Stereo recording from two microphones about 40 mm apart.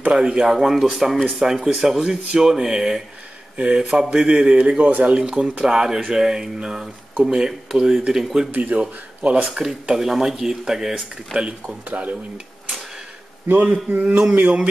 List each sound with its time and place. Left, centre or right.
0.1 s a man's voice: right
0.6 s speech: centre
3.5 s a man's voice: right
4.9 s a sound: right
5.2 s a man's voice: right
8.5 s speech: right
9.5 s speech: centre
11.3 s a man's voice: right
11.9 s speech: right
13.5 s a sound: right